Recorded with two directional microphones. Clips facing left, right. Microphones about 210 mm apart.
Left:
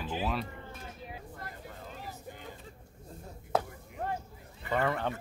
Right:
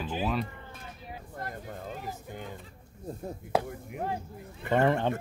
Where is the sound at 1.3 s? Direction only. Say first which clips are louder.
Right 6 dB; 45° right (ahead or behind).